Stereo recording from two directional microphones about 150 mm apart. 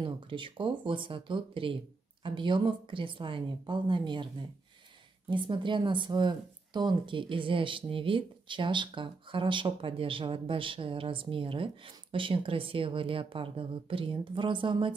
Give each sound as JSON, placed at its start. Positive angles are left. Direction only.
{"t": 0.0, "sound": "speech", "side_deg": -35}
{"t": 5.3, "sound": "speech", "side_deg": -35}